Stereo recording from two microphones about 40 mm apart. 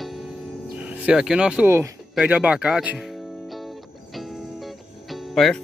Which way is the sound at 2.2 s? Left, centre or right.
Right.